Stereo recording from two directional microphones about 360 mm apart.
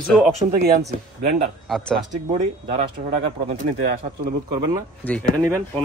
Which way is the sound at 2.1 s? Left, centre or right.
Centre.